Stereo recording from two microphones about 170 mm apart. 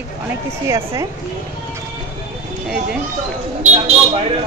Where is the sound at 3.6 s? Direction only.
40° right (ahead or behind).